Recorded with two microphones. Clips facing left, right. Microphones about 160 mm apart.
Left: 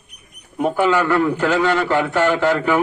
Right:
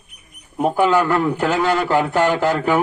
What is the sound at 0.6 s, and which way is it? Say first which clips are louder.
A man's voice: right 1 dB; 35° right (ahead or behind).